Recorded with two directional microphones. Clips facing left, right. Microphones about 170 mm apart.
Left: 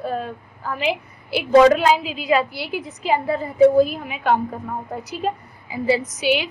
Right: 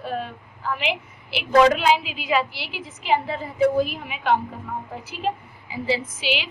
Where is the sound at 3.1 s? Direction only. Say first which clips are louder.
Left 1 dB; 60° left (ahead or behind).